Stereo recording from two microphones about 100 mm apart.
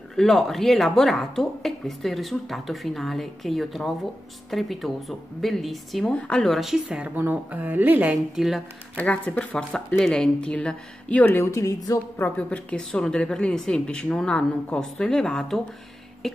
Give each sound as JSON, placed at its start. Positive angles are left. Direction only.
{"t": 0.1, "sound": "speech", "side_deg": 5}
{"t": 8.4, "sound": "speech", "side_deg": -5}
{"t": 8.9, "sound": "speech", "side_deg": 15}
{"t": 11.4, "sound": "a woman's voice", "side_deg": 30}
{"t": 12.4, "sound": "speech", "side_deg": 15}